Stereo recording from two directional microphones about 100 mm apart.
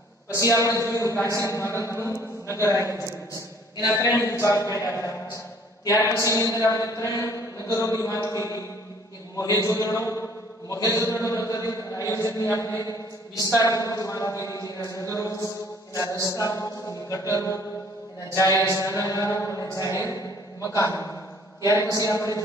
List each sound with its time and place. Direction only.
0.3 s a woman's voice: 30° left (ahead or behind)